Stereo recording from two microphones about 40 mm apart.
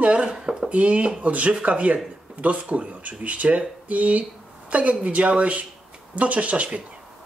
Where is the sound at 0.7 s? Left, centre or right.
Right.